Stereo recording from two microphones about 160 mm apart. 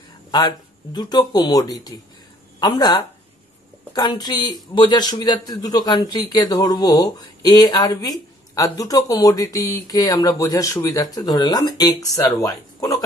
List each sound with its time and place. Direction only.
0.3 s a man's voice: 25° left (ahead or behind)